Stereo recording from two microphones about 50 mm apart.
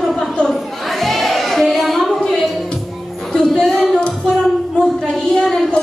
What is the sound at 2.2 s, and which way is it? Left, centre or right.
Music, centre.